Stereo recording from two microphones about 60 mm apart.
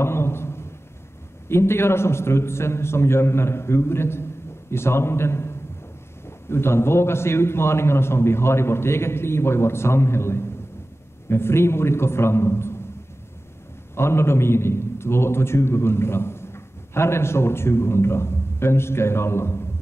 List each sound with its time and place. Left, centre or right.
0.0 s a sound: left
1.5 s a man's voice: left
13.9 s a man's voice: left